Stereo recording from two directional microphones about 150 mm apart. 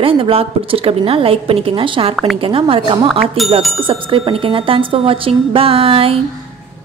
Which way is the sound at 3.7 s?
35° right (ahead or behind).